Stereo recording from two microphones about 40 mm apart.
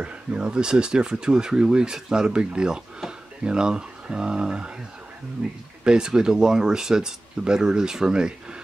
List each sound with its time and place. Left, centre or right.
0.0 s speech: right
5.9 s speech: centre